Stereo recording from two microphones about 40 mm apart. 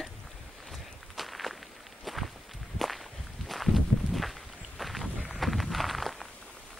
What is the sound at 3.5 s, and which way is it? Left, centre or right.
Walk, centre.